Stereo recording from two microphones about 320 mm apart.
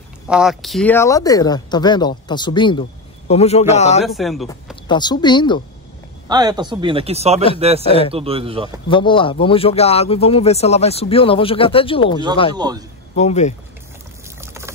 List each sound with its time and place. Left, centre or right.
0.3 s speech: centre; by 4.0 s left
4.0 s a man's voice: centre
4.8 s speech: centre
6.2 s speech: centre
7.8 s speech: centre
8.1 s speech: centre
8.8 s speech: centre
12.5 s speech: centre
13.1 s speech: left
14.4 s boiling: centre